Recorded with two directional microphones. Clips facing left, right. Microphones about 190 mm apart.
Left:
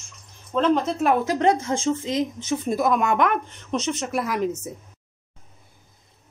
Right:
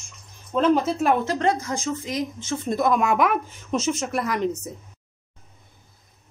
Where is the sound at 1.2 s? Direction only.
15° left (ahead or behind).